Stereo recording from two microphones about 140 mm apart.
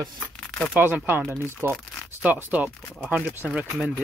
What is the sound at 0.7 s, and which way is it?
Speech, 10° right (ahead or behind).